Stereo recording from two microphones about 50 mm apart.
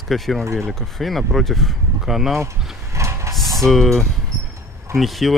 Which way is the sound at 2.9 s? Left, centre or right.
Right.